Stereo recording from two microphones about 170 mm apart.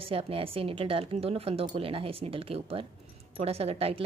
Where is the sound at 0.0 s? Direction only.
35° right (ahead or behind).